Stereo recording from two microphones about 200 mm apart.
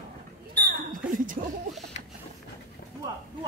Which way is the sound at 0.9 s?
45° right (ahead or behind).